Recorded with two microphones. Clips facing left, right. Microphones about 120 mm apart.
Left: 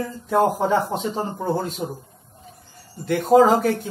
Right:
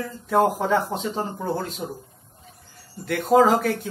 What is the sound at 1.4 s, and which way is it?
Speech, 20° left (ahead or behind).